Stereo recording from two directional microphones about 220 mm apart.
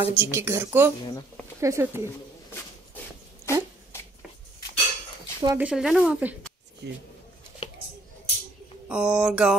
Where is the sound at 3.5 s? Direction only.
10° left (ahead or behind).